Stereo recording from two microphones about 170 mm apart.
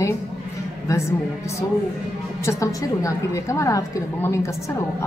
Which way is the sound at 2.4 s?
20° left (ahead or behind).